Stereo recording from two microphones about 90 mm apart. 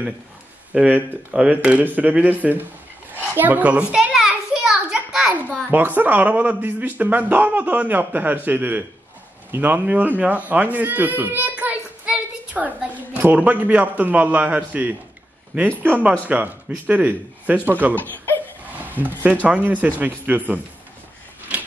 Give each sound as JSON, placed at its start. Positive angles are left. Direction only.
{"t": 0.7, "sound": "a child's voice", "side_deg": -20}
{"t": 5.7, "sound": "speech", "side_deg": -20}